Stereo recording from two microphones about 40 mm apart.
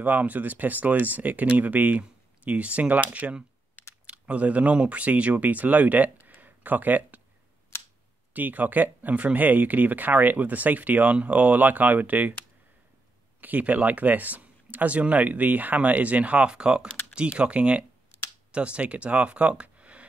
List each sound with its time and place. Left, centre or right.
0.0 s speech: right
6.2 s a sound: right
8.3 s speech: right
13.4 s speech: right